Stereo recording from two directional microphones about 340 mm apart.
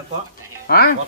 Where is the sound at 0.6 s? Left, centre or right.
Left.